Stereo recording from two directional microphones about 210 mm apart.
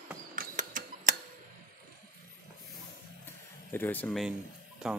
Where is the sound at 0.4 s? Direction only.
40° right (ahead or behind).